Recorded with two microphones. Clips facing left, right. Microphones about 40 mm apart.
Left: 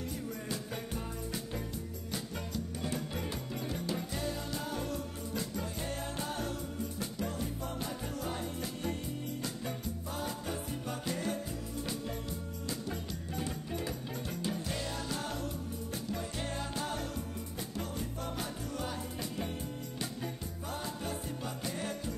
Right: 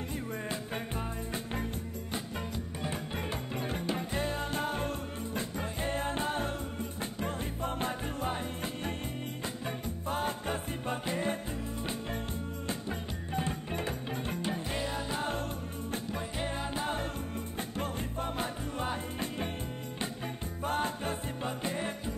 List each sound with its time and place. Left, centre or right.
0.3 s music: right
12.6 s music: right
17.6 s music: right
20.6 s music: right